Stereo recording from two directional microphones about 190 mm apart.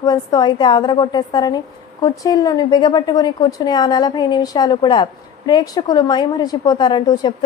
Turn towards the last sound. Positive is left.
turn(degrees=20)  # may be behind; listen again after turning